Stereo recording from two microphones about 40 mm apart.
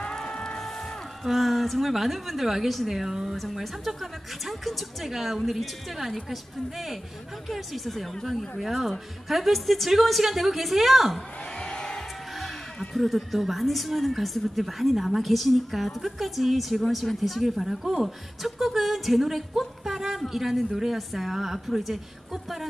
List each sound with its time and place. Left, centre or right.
0.0 s music: centre
0.6 s speech: centre
11.5 s music: centre
12.9 s speech: centre